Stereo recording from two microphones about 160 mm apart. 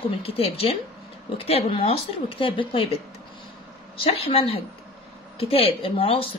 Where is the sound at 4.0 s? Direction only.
35° left (ahead or behind).